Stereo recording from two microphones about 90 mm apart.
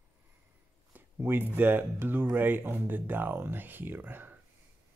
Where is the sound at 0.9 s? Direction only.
25° right (ahead or behind).